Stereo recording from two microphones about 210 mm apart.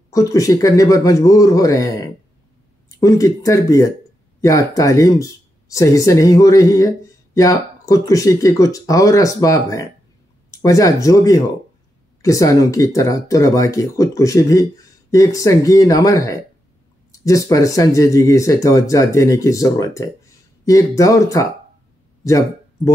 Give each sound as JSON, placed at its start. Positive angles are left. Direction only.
{"t": 0.1, "sound": "speech", "side_deg": 15}